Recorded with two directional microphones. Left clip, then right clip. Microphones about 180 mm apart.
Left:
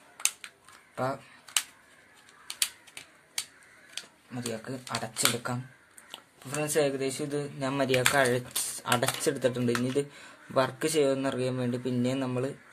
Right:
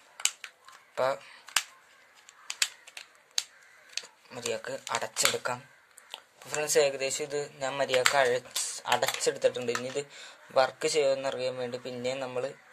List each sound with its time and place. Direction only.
0.9 s speech: 35° right (ahead or behind)
4.3 s speech: 35° right (ahead or behind); by 12.5 s 5° right (ahead or behind)